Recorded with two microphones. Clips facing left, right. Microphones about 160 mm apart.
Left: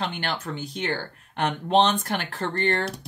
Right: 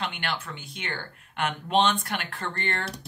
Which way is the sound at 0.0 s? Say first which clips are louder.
Left 3 dB; 40° left (ahead or behind).